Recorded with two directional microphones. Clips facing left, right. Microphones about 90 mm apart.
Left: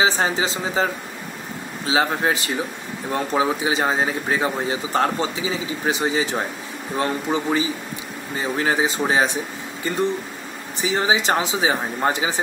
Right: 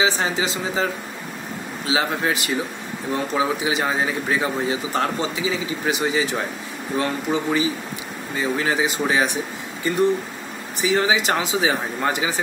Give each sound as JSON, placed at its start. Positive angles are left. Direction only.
{"t": 0.0, "sound": "speech", "side_deg": 35}
{"t": 1.9, "sound": "speech", "side_deg": 35}
{"t": 10.8, "sound": "speech", "side_deg": 25}